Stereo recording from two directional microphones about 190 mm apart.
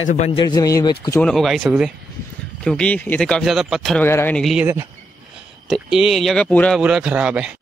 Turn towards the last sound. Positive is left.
turn(degrees=-5)  # may be behind; listen again after turning